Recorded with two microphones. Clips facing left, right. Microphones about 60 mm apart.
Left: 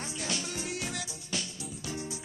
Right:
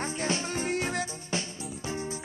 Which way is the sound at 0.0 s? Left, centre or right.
Right.